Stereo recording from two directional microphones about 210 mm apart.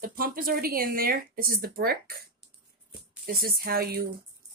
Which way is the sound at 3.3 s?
45° right (ahead or behind).